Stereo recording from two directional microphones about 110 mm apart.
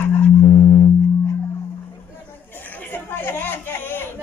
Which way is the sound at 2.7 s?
15° left (ahead or behind).